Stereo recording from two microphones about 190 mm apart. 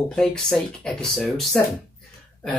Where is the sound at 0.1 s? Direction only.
5° left (ahead or behind).